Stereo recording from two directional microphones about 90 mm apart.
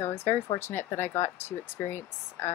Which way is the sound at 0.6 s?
25° left (ahead or behind).